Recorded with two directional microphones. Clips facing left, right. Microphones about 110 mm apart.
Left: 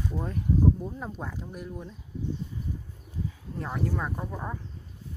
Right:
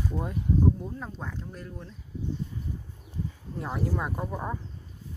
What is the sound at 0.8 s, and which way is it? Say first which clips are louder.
Speech: left 2 dB; 5° left (ahead or behind).